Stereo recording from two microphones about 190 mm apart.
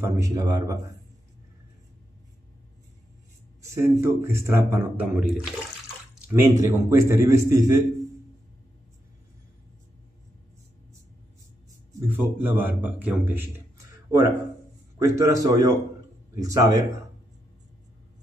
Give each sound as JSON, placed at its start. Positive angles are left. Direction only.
{"t": 0.0, "sound": "speech", "side_deg": -20}
{"t": 3.7, "sound": "speech", "side_deg": -15}
{"t": 12.1, "sound": "speech", "side_deg": -10}
{"t": 15.0, "sound": "speech", "side_deg": -15}